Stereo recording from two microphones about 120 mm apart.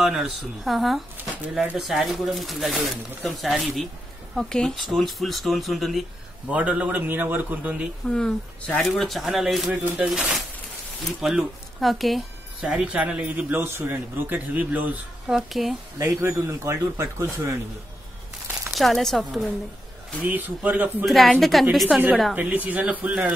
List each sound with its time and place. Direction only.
0.0 s speech: centre (ahead or behind)
1.1 s shuffling cards: 15° right (ahead or behind)
1.5 s speech: 5° right (ahead or behind)
6.5 s speech: 10° right (ahead or behind)
8.1 s speech: 5° left (ahead or behind); by 15.3 s 10° right (ahead or behind)
15.3 s speech: centre (ahead or behind)
16.0 s a man's voice: 20° right (ahead or behind)
18.7 s speech: centre (ahead or behind)
20.2 s speech: 15° right (ahead or behind)
21.0 s speech: centre (ahead or behind)
22.3 s speech: 15° right (ahead or behind)